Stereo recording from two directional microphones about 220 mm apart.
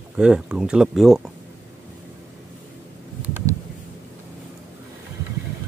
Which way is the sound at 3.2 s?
10° right (ahead or behind).